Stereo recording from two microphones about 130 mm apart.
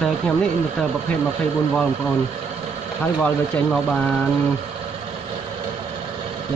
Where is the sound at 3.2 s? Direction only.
10° left (ahead or behind).